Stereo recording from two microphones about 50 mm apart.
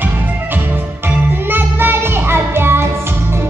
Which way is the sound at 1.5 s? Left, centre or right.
Right.